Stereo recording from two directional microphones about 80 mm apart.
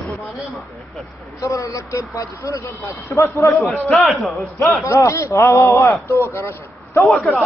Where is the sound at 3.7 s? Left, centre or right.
Centre.